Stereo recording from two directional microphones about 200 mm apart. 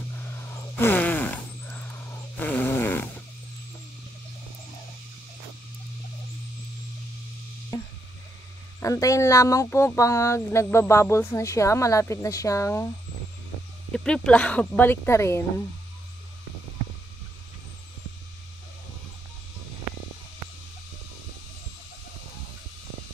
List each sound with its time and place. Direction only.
0.2 s a sound: 10° left (ahead or behind)
7.7 s music: 15° left (ahead or behind)
8.8 s speech: 15° left (ahead or behind)
13.9 s speech: 5° left (ahead or behind)